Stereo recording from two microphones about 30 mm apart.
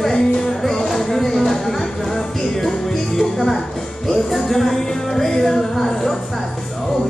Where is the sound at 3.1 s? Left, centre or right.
Centre.